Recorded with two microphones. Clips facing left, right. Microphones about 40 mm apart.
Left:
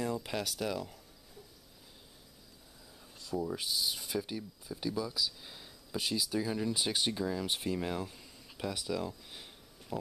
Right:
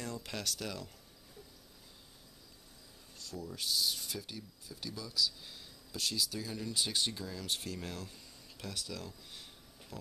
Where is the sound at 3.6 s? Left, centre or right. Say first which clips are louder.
Even; centre.